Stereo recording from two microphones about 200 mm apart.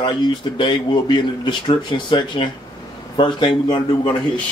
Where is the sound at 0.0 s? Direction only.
25° left (ahead or behind).